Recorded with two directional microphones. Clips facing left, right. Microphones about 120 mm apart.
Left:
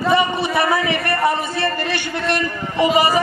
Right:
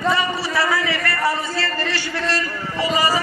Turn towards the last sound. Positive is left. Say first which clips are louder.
# left 4 dB
turn(degrees=20)  # may be behind; listen again after turning